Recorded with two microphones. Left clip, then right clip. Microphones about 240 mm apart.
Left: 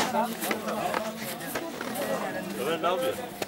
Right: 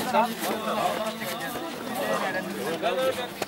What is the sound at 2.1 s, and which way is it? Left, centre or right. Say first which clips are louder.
Speech: right 4 dB; centre.